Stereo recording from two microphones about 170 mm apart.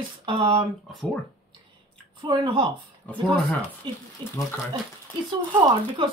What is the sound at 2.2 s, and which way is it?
Speech, 25° right (ahead or behind).